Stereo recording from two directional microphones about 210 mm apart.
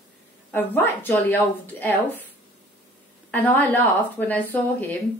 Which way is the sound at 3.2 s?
10° left (ahead or behind).